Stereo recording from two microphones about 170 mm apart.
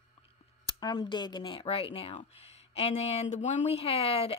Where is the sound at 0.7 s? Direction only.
25° left (ahead or behind).